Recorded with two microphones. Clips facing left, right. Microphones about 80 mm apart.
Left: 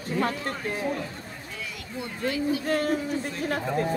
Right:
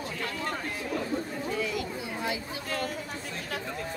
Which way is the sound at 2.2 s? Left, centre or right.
Centre.